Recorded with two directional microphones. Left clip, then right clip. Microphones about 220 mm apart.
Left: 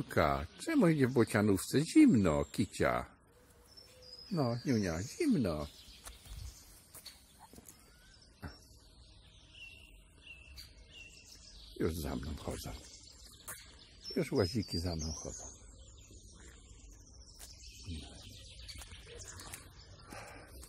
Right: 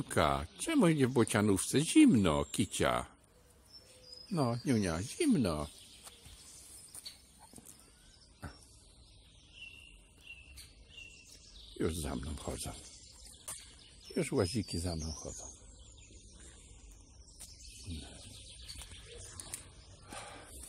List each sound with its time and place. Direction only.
0.1 s speech: 5° right (ahead or behind)
1.8 s speech: 25° right (ahead or behind)
2.0 s speech: 10° right (ahead or behind)
4.3 s speech: 15° right (ahead or behind)
11.8 s speech: 5° right (ahead or behind)
14.1 s speech: 5° right (ahead or behind)
20.1 s a sound: 15° right (ahead or behind)